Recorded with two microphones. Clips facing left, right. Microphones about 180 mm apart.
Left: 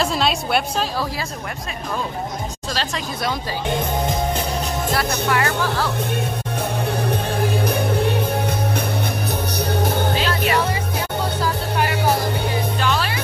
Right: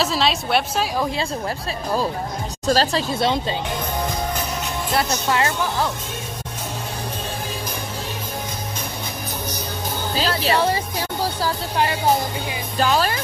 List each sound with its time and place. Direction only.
0.0 s a woman's voice: centre (ahead or behind)
2.7 s speech: 40° right (ahead or behind)
5.3 s speech: 20° right (ahead or behind)
7.6 s music: 60° left (ahead or behind)
10.1 s music: 35° right (ahead or behind)
12.8 s music: 40° right (ahead or behind)